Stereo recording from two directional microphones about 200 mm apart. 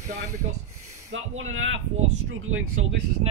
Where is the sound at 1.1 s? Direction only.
80° right.